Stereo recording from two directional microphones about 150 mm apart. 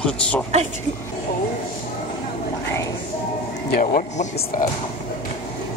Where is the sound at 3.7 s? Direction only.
60° left (ahead or behind).